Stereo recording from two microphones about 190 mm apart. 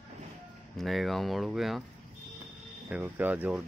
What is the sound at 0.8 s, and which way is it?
Speech, centre (ahead or behind).